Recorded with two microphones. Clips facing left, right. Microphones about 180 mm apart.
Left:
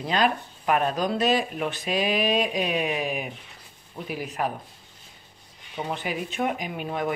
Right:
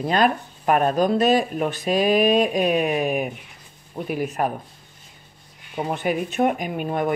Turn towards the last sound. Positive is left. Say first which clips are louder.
# right 5 dB
turn(degrees=-50)  # may be behind; listen again after turning